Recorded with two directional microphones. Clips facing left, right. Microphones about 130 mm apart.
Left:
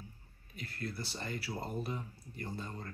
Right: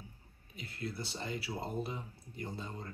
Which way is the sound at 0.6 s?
20° right (ahead or behind).